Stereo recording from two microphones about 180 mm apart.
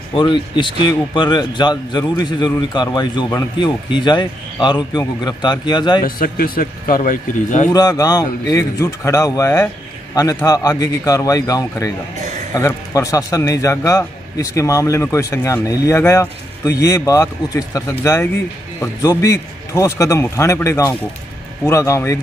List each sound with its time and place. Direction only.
0.1 s a man's voice: 25° left (ahead or behind)
6.0 s a man's voice: 55° left (ahead or behind)
7.7 s a man's voice: 20° left (ahead or behind)